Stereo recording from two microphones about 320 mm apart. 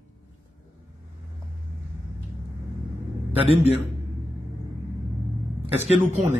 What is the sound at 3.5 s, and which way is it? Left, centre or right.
Speech, centre.